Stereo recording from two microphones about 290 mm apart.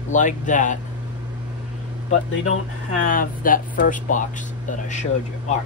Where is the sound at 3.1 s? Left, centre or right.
Left.